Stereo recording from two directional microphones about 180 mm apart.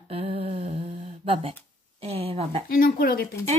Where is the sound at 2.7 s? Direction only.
50° left (ahead or behind).